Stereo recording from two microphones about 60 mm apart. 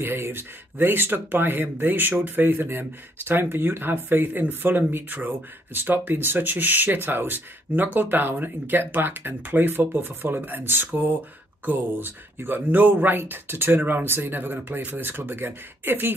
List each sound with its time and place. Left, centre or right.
0.0 s speech: right